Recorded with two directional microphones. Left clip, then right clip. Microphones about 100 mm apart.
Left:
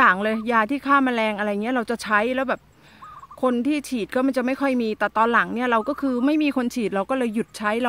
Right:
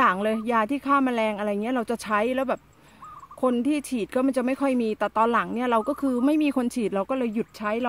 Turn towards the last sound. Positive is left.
turn(degrees=5)  # may be behind; listen again after turning